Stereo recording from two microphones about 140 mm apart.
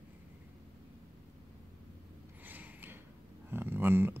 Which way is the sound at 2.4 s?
15° right (ahead or behind).